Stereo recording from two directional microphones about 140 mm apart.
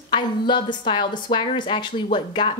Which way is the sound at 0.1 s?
35° left (ahead or behind).